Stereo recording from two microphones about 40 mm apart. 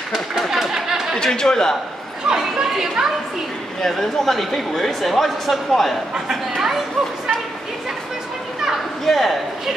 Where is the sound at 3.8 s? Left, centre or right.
Centre.